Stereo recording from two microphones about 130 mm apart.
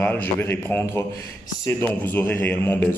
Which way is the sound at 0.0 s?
15° left (ahead or behind).